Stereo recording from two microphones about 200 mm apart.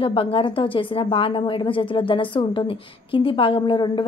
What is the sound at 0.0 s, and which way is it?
Speech, 25° left (ahead or behind).